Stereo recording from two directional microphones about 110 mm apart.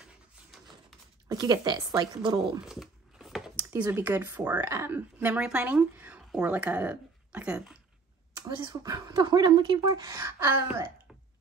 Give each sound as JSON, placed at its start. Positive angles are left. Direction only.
{"t": 1.3, "sound": "speech", "side_deg": -35}
{"t": 2.6, "sound": "a sound", "side_deg": -5}
{"t": 3.9, "sound": "speech", "side_deg": -15}
{"t": 8.5, "sound": "speech", "side_deg": -40}